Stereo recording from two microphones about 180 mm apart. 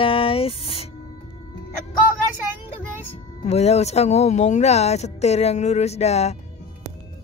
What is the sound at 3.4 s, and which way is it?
Speech, 35° left (ahead or behind).